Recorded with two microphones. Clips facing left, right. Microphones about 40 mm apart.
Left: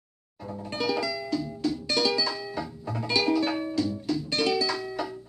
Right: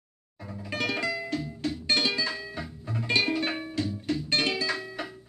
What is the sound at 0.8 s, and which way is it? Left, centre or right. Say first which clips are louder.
Music: left 2 dB; right.